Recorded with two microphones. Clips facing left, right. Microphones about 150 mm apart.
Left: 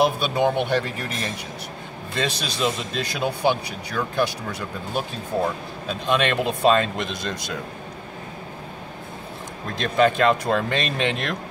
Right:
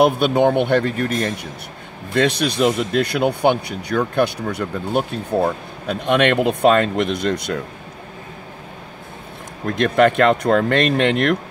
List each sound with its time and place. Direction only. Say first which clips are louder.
0.0 s speech: right 5 dB; 60° right (ahead or behind)
9.7 s speech: right 5 dB; 60° right (ahead or behind)